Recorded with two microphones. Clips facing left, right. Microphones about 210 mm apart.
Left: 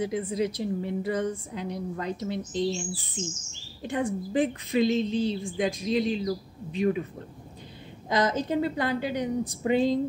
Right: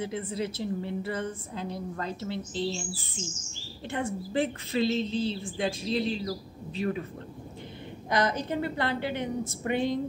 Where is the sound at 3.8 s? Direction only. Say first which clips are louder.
Left 4 dB; 15° left (ahead or behind).